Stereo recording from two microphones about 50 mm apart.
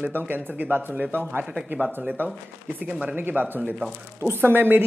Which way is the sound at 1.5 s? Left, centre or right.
Centre.